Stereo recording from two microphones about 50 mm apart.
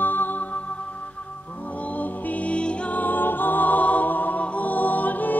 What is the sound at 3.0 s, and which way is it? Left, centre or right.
Music, left.